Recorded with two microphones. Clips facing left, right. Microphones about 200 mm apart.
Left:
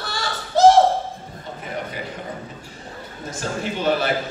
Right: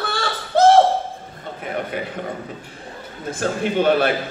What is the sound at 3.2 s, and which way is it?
Music, 55° right (ahead or behind).